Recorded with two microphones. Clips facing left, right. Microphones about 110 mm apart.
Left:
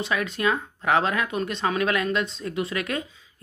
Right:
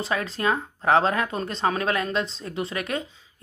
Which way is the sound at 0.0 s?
30° right (ahead or behind).